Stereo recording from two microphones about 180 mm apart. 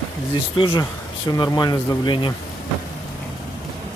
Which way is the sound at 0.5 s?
25° left (ahead or behind).